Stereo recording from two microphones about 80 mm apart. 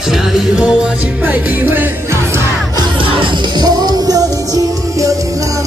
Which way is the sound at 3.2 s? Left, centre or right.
Right.